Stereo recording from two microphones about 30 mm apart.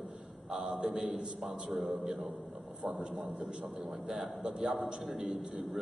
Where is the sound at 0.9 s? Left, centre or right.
Centre.